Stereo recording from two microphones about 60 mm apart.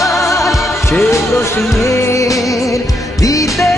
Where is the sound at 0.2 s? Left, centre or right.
Left.